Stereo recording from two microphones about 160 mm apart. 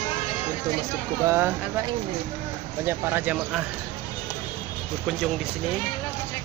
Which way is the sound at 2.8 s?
15° right (ahead or behind).